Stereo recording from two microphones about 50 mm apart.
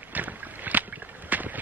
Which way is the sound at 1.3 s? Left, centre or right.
Right.